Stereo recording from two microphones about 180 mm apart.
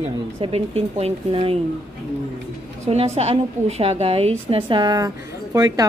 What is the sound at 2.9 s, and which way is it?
A woman's voice, 35° right (ahead or behind).